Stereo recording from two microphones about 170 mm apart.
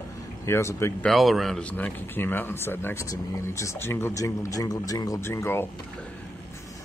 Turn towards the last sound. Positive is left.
turn(degrees=15)  # may be behind; listen again after turning